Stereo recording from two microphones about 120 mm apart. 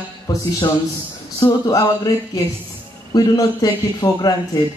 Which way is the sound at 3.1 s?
30° left (ahead or behind).